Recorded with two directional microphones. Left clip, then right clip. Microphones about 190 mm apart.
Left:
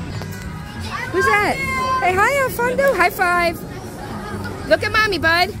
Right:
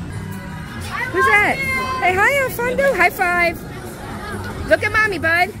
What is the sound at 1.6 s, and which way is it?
Speech, 55° left (ahead or behind).